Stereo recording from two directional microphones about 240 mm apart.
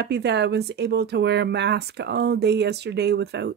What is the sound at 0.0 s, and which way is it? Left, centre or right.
Speech, right.